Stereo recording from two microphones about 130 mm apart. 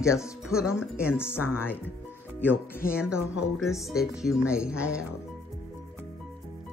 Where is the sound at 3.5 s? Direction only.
Centre (ahead or behind).